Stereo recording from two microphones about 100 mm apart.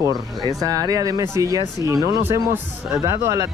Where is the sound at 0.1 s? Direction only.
40° left (ahead or behind).